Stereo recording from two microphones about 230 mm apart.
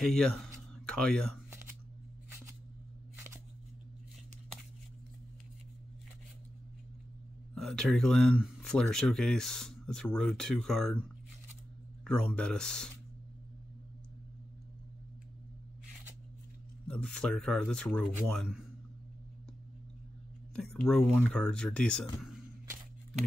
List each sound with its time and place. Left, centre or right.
0.0 s speech: centre
7.5 s speech: centre
16.8 s speech: centre
20.5 s speech: centre
22.2 s a sound: centre